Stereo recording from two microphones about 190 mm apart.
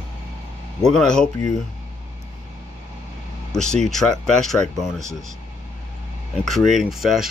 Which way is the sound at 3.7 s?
Centre (ahead or behind).